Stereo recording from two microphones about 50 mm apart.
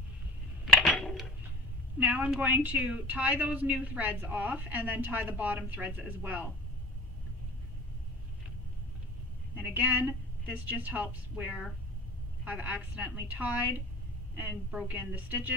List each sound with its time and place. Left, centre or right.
2.0 s speech: right
9.6 s speech: right